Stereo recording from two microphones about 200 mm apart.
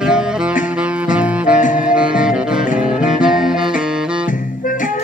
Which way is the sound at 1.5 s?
40° left (ahead or behind).